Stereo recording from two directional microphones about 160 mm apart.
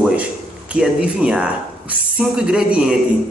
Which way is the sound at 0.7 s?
5° right (ahead or behind).